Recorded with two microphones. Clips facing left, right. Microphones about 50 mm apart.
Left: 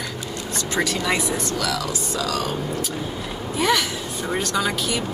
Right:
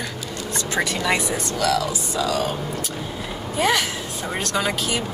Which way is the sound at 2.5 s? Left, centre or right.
Centre.